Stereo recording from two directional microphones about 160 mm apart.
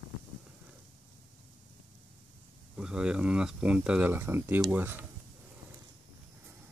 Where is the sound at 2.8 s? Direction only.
5° right (ahead or behind).